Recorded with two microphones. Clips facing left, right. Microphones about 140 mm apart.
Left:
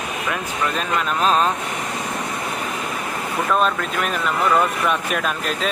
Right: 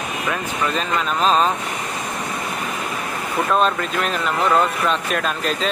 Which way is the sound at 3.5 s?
Centre (ahead or behind).